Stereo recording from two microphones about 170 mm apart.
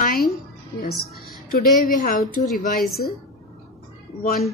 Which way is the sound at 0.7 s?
65° left (ahead or behind).